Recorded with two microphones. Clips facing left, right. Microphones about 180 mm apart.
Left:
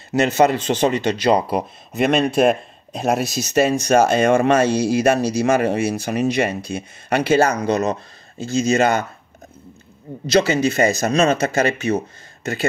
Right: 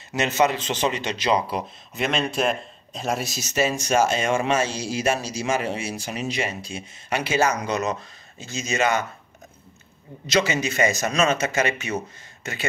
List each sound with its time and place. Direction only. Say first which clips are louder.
0.1 s speech: left 6 dB; 55° left (ahead or behind)
7.5 s speech: left 6 dB; 30° left (ahead or behind)
10.2 s speech: left 6 dB; 35° left (ahead or behind)